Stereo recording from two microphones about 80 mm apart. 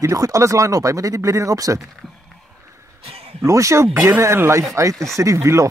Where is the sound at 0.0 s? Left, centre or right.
Right.